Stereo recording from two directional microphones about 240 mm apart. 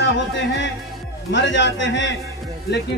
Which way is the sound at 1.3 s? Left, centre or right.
Left.